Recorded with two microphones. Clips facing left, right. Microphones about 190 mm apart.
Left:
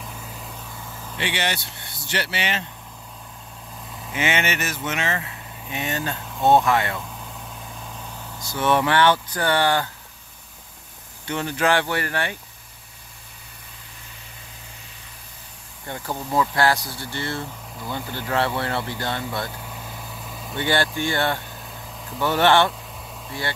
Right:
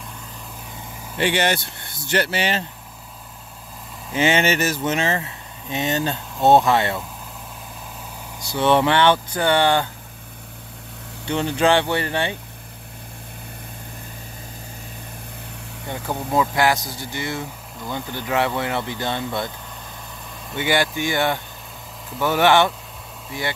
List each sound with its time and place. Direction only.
1.1 s speech: 45° right (ahead or behind)
4.1 s speech: 30° right (ahead or behind)
8.4 s speech: 30° right (ahead or behind)
11.2 s speech: 25° right (ahead or behind)
15.9 s speech: 15° right (ahead or behind)
20.5 s speech: 15° right (ahead or behind)